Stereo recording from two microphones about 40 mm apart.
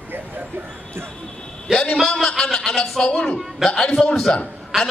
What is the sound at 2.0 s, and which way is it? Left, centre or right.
A man's voice, centre.